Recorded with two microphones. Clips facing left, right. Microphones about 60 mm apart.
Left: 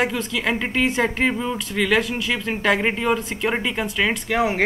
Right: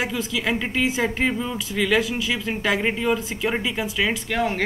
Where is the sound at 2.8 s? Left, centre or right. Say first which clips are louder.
Left 1 dB; centre.